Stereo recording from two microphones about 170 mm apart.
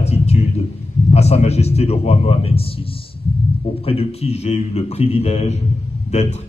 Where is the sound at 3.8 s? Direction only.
35° left (ahead or behind).